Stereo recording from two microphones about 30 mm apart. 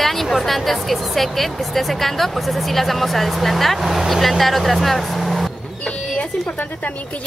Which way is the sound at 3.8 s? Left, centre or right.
Centre.